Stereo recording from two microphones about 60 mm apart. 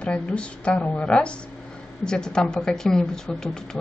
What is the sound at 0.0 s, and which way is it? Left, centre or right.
A woman's voice, centre.